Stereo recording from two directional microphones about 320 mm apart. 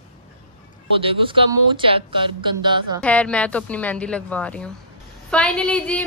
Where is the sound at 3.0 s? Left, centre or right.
Centre.